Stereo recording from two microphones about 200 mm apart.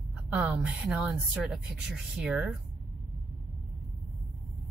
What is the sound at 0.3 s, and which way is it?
Speech, 5° right (ahead or behind).